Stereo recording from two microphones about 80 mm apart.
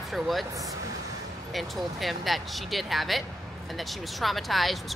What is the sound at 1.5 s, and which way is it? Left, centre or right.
Speech, centre.